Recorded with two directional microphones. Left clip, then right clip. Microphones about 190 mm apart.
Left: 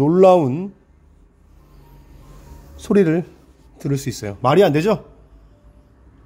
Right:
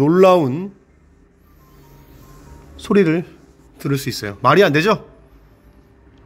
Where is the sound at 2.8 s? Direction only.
20° left (ahead or behind).